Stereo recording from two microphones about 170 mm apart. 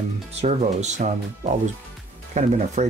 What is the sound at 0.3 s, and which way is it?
Speech, 40° right (ahead or behind).